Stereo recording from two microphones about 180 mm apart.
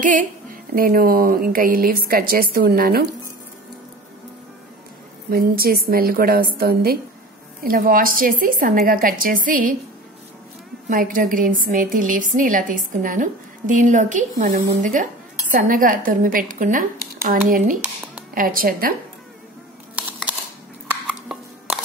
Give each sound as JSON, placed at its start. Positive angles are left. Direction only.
{"t": 0.0, "sound": "speech", "side_deg": -45}
{"t": 5.3, "sound": "a woman's voice", "side_deg": -55}
{"t": 10.9, "sound": "a woman's voice", "side_deg": -50}
{"t": 21.1, "sound": "a sound", "side_deg": -5}